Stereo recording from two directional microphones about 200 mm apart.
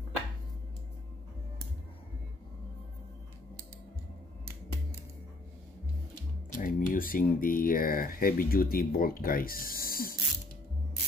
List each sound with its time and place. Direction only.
6.5 s speech: 45° left (ahead or behind)